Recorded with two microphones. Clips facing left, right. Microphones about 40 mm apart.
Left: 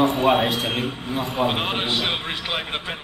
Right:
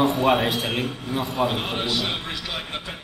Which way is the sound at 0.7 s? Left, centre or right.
Left.